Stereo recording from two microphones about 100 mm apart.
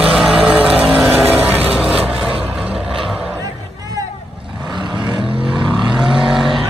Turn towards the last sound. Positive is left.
turn(degrees=0)  # may be behind; listen again after turning